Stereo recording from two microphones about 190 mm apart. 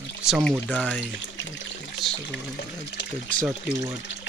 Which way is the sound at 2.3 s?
65° left (ahead or behind).